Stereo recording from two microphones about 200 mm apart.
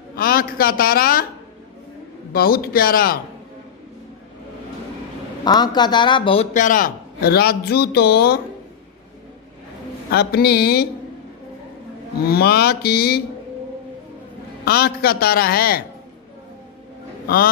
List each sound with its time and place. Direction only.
0.1 s a man's voice: 50° left (ahead or behind)
2.3 s a man's voice: 50° left (ahead or behind)
5.4 s a man's voice: 20° left (ahead or behind); by 8.4 s 50° left (ahead or behind)
10.1 s a man's voice: 50° left (ahead or behind)
12.3 s a man's voice: 50° left (ahead or behind)
14.6 s a man's voice: 50° left (ahead or behind)